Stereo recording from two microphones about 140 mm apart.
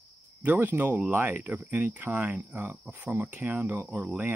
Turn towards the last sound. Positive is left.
turn(degrees=-10)  # may be behind; listen again after turning